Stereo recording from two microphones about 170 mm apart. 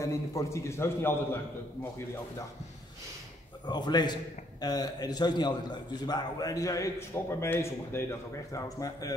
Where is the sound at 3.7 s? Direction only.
25° left (ahead or behind).